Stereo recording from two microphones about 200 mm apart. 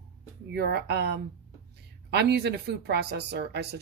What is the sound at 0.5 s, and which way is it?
Speech, 55° right (ahead or behind).